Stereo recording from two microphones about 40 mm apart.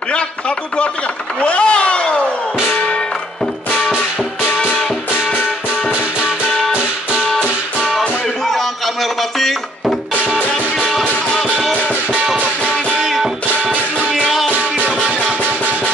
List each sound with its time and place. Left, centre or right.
1.4 s a sound: left
8.5 s music: centre
11.7 s music: right
13.0 s music: centre
14.1 s music: centre
14.9 s music: right